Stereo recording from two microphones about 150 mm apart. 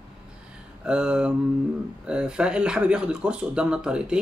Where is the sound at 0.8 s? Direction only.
5° right (ahead or behind).